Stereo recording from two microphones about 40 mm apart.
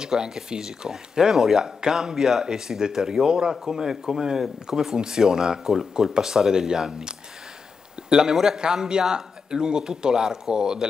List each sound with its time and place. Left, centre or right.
0.0 s speech: centre